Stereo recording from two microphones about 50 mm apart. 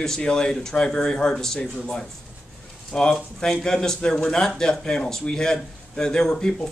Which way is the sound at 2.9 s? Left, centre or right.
Centre.